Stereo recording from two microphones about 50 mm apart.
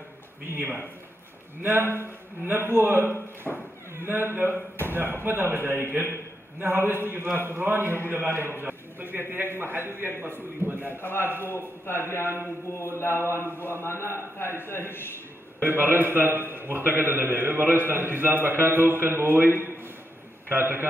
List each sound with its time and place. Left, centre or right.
0.5 s a man's voice: right
3.4 s speech: centre
3.9 s a man's voice: right
11.0 s a man's voice: left
11.2 s a man's voice: right
11.5 s a man's voice: left
13.3 s a man's voice: left
15.6 s a man's voice: right